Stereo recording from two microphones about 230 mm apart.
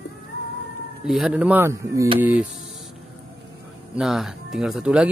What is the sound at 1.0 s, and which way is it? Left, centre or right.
Speech, centre.